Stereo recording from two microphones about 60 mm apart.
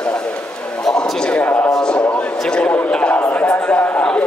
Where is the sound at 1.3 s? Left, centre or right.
Left.